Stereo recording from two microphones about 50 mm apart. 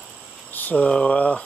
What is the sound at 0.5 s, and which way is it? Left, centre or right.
Speech, left.